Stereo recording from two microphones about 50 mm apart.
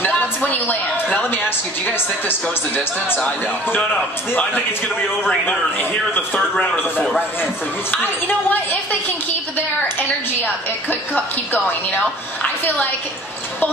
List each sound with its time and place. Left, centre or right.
0.0 s a sound: left
1.9 s speech: left
5.4 s a woman's voice: left
7.9 s a woman's voice: left
9.9 s a woman's voice: left